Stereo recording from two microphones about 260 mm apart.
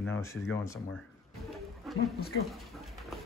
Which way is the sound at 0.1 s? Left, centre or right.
Centre.